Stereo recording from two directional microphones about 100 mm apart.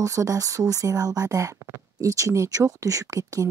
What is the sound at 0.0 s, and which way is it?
Speech, 35° right (ahead or behind).